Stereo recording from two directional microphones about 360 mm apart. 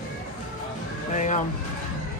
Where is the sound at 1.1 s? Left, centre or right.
Centre.